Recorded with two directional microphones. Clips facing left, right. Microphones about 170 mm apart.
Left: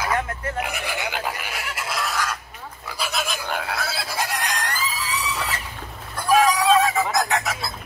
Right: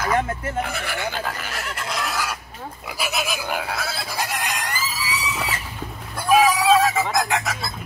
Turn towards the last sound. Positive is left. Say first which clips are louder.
# even
turn(degrees=0)  # may be behind; listen again after turning